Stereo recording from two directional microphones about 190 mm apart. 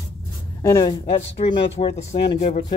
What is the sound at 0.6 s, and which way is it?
Speech, 20° left (ahead or behind).